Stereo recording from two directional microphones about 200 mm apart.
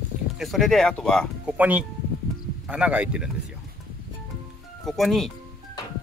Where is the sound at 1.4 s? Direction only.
5° right (ahead or behind).